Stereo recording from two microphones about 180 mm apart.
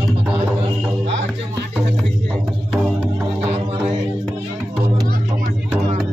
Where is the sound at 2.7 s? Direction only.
5° right (ahead or behind).